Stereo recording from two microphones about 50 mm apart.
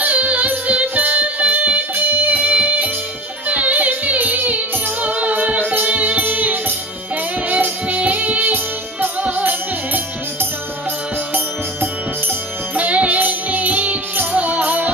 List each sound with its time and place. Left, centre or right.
0.0 s music: right
12.7 s music: right